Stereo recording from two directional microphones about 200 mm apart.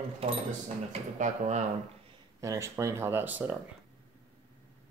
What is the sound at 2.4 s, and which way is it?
Speech, 15° right (ahead or behind).